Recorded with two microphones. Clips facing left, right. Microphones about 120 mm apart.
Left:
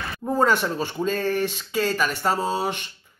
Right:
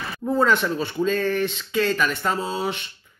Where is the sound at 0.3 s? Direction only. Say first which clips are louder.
Right 1 dB; 40° left (ahead or behind).